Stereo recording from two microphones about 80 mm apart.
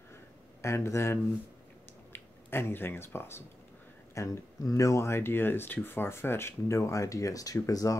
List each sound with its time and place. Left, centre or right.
0.1 s a sound: left
2.1 s speech: left
4.1 s speech: left